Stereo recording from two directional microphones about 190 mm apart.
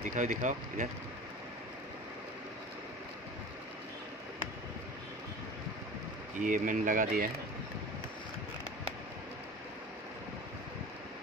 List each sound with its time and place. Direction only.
0.1 s speech: 40° right (ahead or behind)
6.3 s speech: 45° right (ahead or behind)